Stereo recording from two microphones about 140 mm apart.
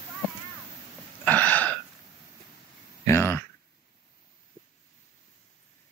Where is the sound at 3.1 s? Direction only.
15° left (ahead or behind).